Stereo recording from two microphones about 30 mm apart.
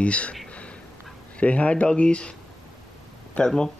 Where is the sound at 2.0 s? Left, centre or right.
Left.